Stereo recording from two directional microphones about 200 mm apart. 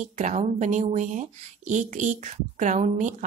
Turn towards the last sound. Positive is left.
turn(degrees=-40)  # may be behind; listen again after turning